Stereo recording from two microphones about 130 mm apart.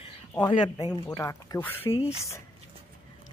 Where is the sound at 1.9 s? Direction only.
50° left (ahead or behind).